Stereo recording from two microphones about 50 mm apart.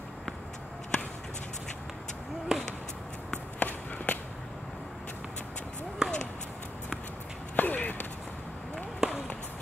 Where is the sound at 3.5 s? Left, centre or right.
Left.